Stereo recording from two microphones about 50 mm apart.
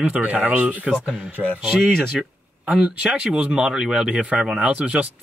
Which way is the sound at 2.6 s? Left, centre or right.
Right.